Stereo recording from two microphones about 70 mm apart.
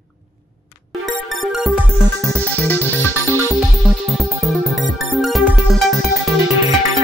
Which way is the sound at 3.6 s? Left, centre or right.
Centre.